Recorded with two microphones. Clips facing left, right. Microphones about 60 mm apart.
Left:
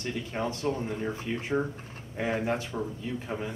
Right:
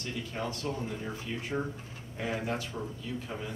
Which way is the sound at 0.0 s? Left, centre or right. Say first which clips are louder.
Left 4 dB; left.